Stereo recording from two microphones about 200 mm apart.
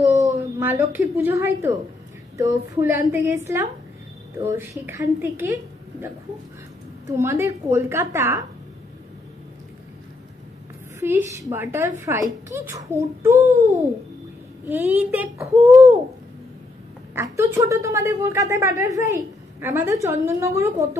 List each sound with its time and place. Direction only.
0.1 s a woman's voice: 15° right (ahead or behind)
7.1 s a woman's voice: 15° right (ahead or behind)
11.0 s a woman's voice: 10° right (ahead or behind)
14.7 s a woman's voice: 10° right (ahead or behind)
17.1 s a woman's voice: 10° right (ahead or behind)